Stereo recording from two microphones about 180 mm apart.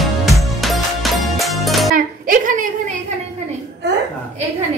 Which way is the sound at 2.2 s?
45° right (ahead or behind).